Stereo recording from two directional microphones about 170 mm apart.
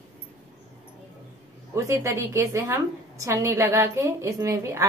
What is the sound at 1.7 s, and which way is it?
A woman's voice, 15° right (ahead or behind).